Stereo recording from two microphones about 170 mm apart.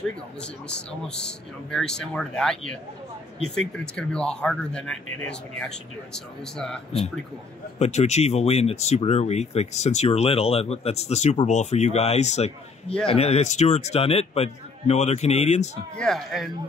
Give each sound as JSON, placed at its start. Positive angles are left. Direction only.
{"t": 0.0, "sound": "speech", "side_deg": 5}
{"t": 7.8, "sound": "speech", "side_deg": 40}
{"t": 16.0, "sound": "speech", "side_deg": 0}